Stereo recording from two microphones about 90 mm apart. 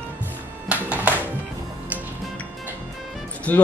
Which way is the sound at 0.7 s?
15° right (ahead or behind).